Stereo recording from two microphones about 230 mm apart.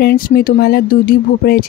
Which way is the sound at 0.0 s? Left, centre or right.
Left.